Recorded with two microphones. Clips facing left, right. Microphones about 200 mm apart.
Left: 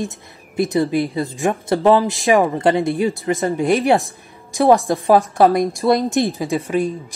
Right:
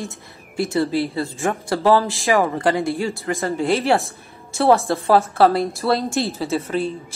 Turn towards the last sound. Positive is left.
turn(degrees=15)  # may be behind; listen again after turning